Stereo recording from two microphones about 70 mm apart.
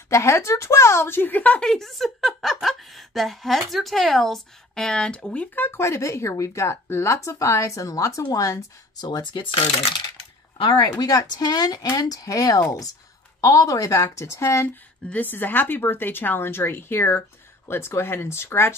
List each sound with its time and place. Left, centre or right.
0.1 s speech: left
1.6 s a woman's voice: centre; by 5.8 s left
5.8 s speech: left
9.0 s speech: left
10.7 s speech: left
12.0 s speech: left
15.0 s a woman's voice: centre
15.3 s speech: left